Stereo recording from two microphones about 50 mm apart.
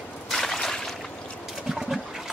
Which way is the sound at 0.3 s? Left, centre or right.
Centre.